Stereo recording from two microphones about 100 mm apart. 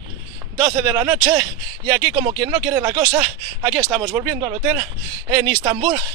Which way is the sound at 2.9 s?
45° right (ahead or behind).